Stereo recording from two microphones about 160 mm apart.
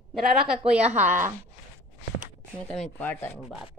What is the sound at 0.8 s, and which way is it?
Humming, 45° right (ahead or behind).